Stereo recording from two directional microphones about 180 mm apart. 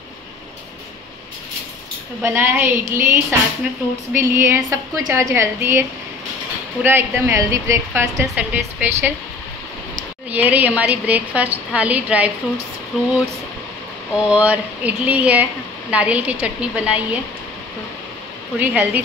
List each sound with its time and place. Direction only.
2.2 s a woman's voice: 10° right (ahead or behind)
10.3 s a woman's voice: 10° right (ahead or behind)
14.1 s a woman's voice: 5° right (ahead or behind)
18.6 s a woman's voice: 10° right (ahead or behind)